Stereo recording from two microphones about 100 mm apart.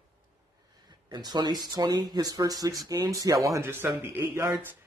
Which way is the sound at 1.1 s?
45° right (ahead or behind).